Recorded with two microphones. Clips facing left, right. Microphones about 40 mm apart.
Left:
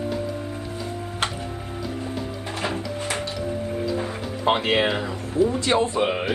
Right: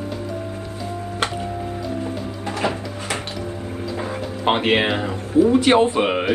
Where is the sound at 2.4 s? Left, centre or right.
Right.